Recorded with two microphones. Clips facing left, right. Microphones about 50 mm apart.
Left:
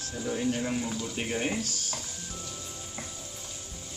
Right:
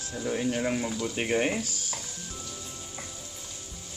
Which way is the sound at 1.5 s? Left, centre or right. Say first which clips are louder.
Right 1 dB; centre.